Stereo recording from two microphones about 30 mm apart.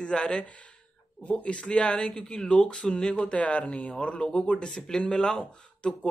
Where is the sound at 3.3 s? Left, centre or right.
Left.